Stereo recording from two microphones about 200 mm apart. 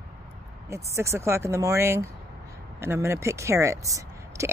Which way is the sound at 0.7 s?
15° right (ahead or behind).